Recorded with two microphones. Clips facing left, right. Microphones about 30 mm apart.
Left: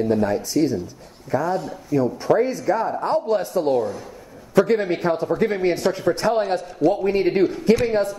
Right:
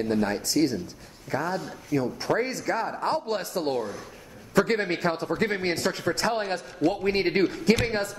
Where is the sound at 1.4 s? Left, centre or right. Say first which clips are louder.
Left 5 dB; centre.